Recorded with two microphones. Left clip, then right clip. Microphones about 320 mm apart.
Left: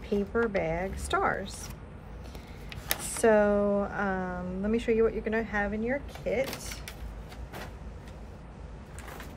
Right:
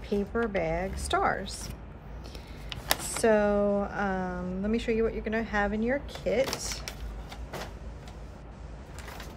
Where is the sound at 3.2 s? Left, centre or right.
Centre.